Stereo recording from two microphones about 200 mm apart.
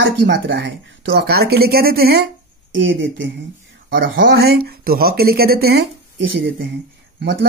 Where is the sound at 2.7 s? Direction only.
70° right (ahead or behind).